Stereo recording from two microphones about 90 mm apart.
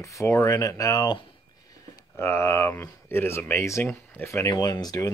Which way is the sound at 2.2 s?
30° left (ahead or behind).